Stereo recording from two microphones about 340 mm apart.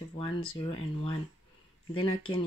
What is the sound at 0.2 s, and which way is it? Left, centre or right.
Speech, centre.